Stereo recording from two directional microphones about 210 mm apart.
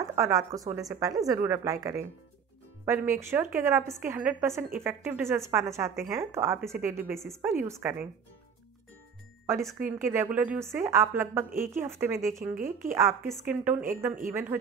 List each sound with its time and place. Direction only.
0.0 s a woman's voice: 15° right (ahead or behind)
9.6 s a woman's voice: centre (ahead or behind)
9.9 s a woman's voice: 10° right (ahead or behind)